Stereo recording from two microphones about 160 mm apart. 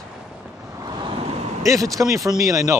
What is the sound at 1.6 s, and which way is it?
Speech, 20° right (ahead or behind).